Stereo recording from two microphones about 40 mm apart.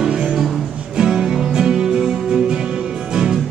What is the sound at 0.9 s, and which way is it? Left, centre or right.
Music, centre.